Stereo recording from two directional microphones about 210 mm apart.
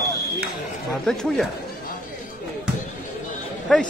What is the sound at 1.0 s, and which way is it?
Speech, centre (ahead or behind).